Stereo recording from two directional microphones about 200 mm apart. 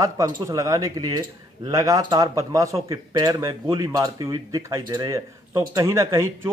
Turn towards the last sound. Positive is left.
turn(degrees=-15)  # may be behind; listen again after turning